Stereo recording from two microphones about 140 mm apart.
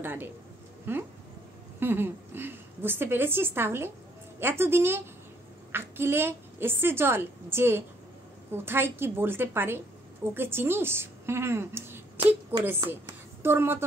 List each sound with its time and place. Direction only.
0.0 s a woman's voice: 15° right (ahead or behind)